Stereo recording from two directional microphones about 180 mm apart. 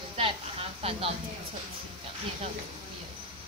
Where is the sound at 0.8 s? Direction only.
30° right (ahead or behind).